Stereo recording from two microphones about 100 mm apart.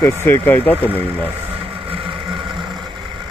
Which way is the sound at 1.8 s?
60° right (ahead or behind).